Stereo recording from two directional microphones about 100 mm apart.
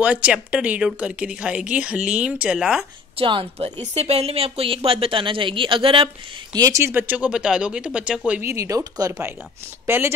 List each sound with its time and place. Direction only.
0.0 s speech: 10° right (ahead or behind)
3.2 s speech: 65° right (ahead or behind)
3.9 s speech: 90° right; by 6.0 s 60° right (ahead or behind)
6.5 s speech: 40° right (ahead or behind)
6.8 s speech: 20° right (ahead or behind)
8.4 s speech: 30° right (ahead or behind)
9.8 s speech: 25° right (ahead or behind)